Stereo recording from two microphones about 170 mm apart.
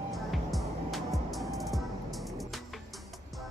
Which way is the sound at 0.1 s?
Centre (ahead or behind).